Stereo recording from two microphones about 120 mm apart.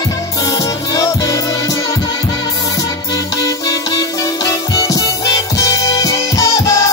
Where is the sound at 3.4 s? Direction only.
30° left (ahead or behind).